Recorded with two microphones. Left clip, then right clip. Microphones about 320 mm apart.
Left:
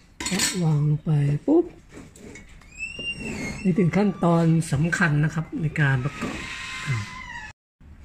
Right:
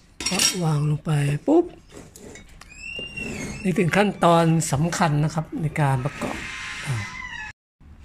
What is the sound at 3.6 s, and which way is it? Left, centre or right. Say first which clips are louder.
Speech: right 3 dB; right.